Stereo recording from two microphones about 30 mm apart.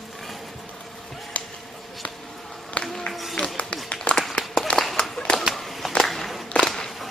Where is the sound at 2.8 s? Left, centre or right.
Centre.